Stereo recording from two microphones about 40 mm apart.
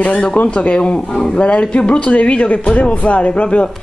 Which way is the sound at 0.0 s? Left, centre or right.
Left.